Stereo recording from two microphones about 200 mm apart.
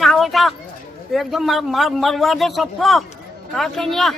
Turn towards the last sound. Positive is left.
turn(degrees=0)  # may be behind; listen again after turning